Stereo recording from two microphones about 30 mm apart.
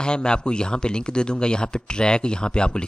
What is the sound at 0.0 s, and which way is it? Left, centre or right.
A man's voice, left.